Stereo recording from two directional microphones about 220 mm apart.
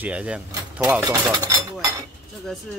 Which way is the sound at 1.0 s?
15° right (ahead or behind).